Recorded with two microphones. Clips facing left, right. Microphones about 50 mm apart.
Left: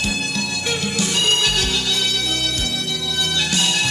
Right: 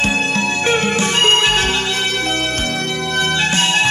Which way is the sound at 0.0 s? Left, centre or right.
Right.